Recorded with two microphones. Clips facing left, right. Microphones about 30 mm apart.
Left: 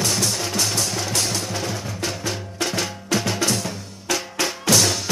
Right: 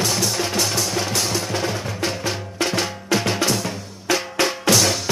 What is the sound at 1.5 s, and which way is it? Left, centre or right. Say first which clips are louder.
Music: right 3 dB; centre.